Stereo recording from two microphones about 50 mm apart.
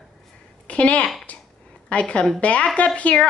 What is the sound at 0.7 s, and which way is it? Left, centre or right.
Speech, left.